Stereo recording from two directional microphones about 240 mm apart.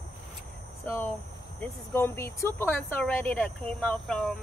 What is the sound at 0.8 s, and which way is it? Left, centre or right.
Speech, centre.